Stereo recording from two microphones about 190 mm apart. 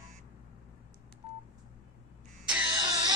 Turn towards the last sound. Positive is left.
turn(degrees=-20)  # may be behind; listen again after turning